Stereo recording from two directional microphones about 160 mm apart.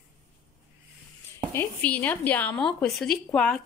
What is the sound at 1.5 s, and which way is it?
A woman's voice, 10° left (ahead or behind).